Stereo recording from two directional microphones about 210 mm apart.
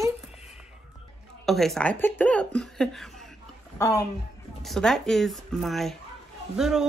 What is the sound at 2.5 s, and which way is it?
Laughter, centre (ahead or behind).